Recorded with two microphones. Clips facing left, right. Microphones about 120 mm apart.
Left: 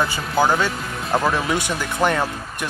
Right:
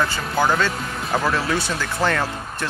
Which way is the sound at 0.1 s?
15° left (ahead or behind).